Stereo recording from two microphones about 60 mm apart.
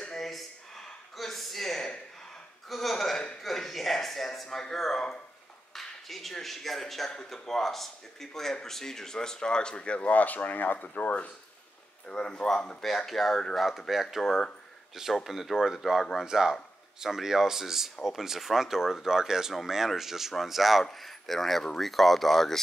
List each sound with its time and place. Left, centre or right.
0.1 s a sound: centre
5.7 s speech: centre; by 11.3 s left
12.1 s speech: centre